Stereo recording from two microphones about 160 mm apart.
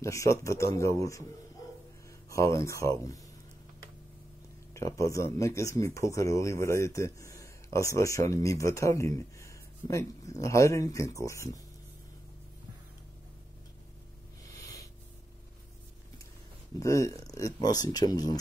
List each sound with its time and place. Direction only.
0.0 s speech: 20° left (ahead or behind)
2.2 s speech: 20° left (ahead or behind)
4.7 s speech: 20° left (ahead or behind)
16.8 s speech: 20° left (ahead or behind)